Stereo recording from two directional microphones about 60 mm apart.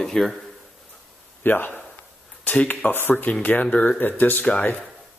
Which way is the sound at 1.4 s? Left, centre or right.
Left.